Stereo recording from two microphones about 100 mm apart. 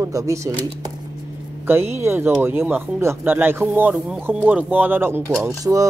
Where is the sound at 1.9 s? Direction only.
25° right (ahead or behind).